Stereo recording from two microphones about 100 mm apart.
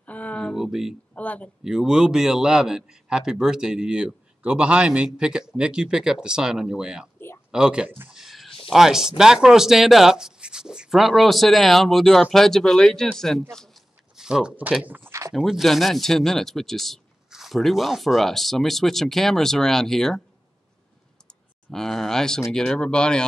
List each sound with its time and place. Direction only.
0.0 s a sound: 15° left (ahead or behind)
0.6 s speech: 5° right (ahead or behind)
1.1 s speech: 15° left (ahead or behind)
1.6 s a man's voice: 5° right (ahead or behind)
8.1 s a sound: centre (ahead or behind)
9.1 s speech: 5° right (ahead or behind)
14.1 s speech: 5° right (ahead or behind); by 15.3 s 30° right (ahead or behind)
15.3 s speech: 5° right (ahead or behind)
21.3 s speech: 5° left (ahead or behind)